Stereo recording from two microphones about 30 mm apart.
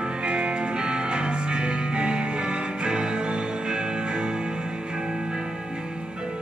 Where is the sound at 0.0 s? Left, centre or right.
Right.